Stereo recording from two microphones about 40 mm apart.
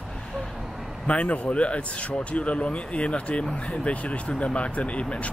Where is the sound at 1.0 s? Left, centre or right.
Left.